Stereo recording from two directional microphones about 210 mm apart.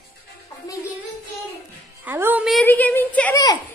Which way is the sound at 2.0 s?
10° right (ahead or behind).